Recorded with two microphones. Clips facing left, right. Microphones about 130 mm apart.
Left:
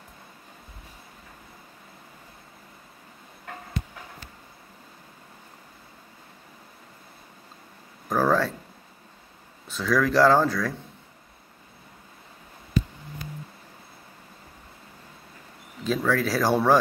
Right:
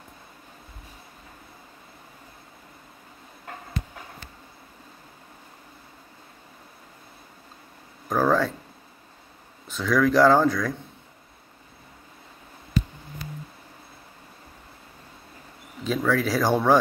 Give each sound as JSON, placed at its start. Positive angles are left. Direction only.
{"t": 8.1, "sound": "speech", "side_deg": 0}
{"t": 9.7, "sound": "speech", "side_deg": 0}
{"t": 15.8, "sound": "speech", "side_deg": 0}